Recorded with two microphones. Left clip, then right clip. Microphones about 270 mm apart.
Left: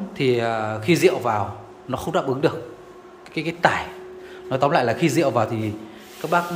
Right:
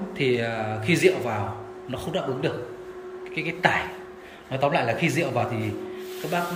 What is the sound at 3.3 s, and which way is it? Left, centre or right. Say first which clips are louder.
A man's voice: left 3 dB; centre.